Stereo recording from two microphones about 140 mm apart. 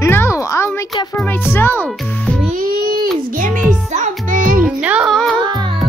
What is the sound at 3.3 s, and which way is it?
Music, 70° right (ahead or behind).